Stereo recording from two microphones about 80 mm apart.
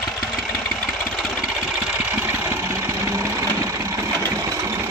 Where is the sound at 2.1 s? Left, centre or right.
Right.